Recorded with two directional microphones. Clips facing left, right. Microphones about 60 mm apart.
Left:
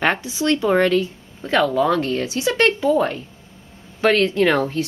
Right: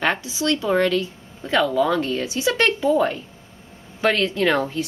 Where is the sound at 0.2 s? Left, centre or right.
Left.